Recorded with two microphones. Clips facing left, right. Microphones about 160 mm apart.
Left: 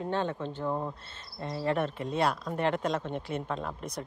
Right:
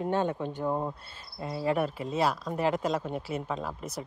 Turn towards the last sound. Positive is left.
turn(degrees=-5)  # may be behind; listen again after turning